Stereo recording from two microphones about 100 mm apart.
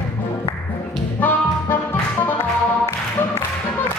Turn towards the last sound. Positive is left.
turn(degrees=25)  # may be behind; listen again after turning